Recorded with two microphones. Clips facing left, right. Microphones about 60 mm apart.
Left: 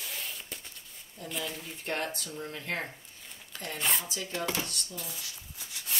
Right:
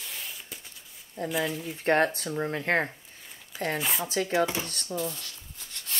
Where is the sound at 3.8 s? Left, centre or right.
Centre.